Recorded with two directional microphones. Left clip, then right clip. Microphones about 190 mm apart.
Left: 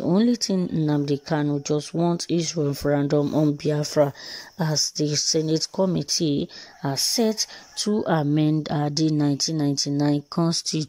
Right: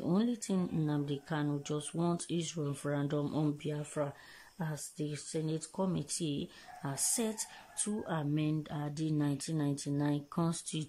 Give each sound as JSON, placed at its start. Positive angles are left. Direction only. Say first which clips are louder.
{"t": 0.0, "sound": "speech", "louder": "left 13 dB", "side_deg": 25}
{"t": 3.6, "sound": "speech", "louder": "left 16 dB", "side_deg": 35}